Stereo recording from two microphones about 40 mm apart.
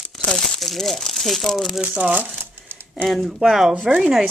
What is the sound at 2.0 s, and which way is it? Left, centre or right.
Speech, right.